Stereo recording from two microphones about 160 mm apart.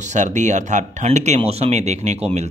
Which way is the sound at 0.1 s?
50° right (ahead or behind).